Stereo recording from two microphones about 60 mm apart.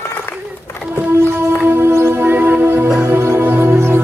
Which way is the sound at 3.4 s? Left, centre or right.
Right.